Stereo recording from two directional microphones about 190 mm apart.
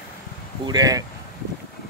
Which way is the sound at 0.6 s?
20° right (ahead or behind).